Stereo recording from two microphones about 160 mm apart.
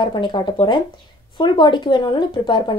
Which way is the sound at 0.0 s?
30° left (ahead or behind).